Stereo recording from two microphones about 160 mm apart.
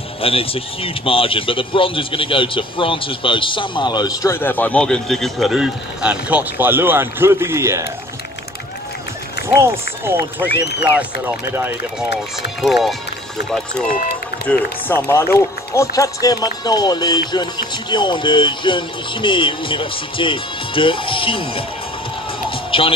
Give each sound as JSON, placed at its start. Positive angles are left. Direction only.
{"t": 0.2, "sound": "speech", "side_deg": 35}
{"t": 9.6, "sound": "speech", "side_deg": -15}
{"t": 12.6, "sound": "speech", "side_deg": 0}
{"t": 13.8, "sound": "speech", "side_deg": 55}
{"t": 14.5, "sound": "speech", "side_deg": 15}
{"t": 22.7, "sound": "speech", "side_deg": 35}